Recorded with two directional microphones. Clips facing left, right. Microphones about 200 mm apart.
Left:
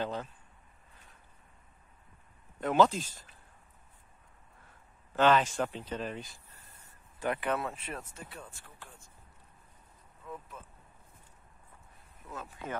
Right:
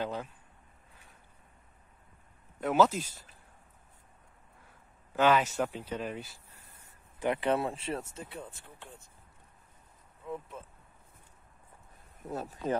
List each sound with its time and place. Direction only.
0.0 s speech: 10° right (ahead or behind)
2.6 s speech: 5° right (ahead or behind)
5.1 s speech: 10° right (ahead or behind)
7.2 s speech: 25° right (ahead or behind)
10.2 s boat: 25° right (ahead or behind)
12.2 s speech: 40° right (ahead or behind)